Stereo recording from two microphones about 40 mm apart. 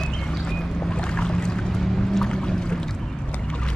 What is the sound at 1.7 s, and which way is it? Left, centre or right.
Boat, centre.